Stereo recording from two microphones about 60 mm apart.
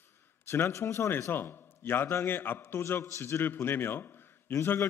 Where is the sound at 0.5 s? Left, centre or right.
Left.